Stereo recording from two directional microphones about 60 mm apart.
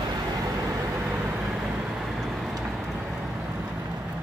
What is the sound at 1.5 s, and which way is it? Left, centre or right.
Vehicle, centre.